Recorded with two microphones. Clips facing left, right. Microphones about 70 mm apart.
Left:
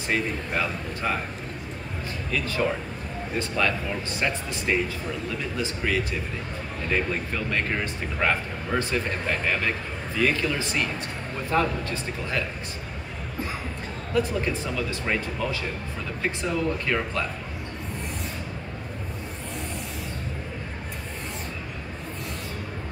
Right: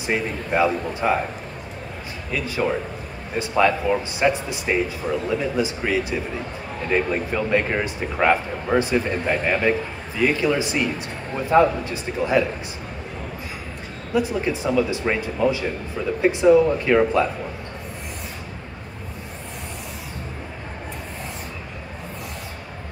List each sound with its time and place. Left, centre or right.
0.0 s speech: centre
2.3 s a man's voice: centre
14.1 s speech: centre